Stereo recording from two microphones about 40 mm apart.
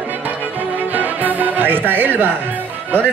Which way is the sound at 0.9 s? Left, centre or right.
Right.